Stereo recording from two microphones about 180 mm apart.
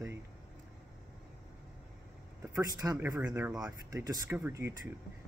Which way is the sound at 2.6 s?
20° right (ahead or behind).